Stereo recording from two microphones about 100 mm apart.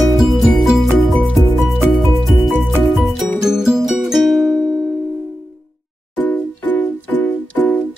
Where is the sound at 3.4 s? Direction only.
5° right (ahead or behind).